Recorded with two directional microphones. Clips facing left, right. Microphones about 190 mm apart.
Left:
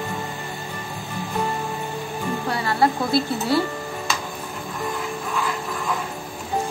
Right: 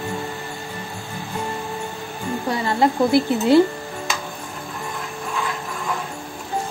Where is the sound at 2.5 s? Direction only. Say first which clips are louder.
Right 2 dB; 20° right (ahead or behind).